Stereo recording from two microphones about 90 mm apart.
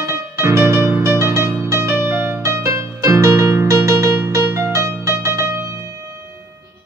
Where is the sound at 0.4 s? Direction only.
30° right (ahead or behind).